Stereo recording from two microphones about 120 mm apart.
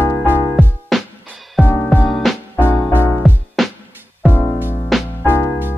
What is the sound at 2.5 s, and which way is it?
Music, 20° left (ahead or behind).